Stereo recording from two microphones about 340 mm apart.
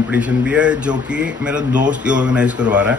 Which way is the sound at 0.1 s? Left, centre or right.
Centre.